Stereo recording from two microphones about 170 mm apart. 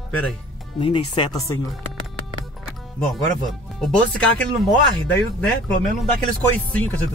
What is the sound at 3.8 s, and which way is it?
Speech, 5° left (ahead or behind).